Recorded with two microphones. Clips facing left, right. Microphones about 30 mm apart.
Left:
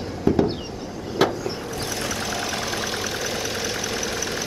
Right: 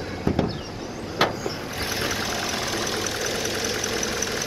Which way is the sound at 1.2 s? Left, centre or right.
Right.